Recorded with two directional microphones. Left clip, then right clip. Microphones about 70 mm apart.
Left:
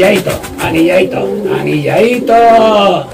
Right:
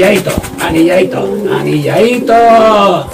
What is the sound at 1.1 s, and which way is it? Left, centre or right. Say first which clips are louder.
Speech: right 1 dB; right.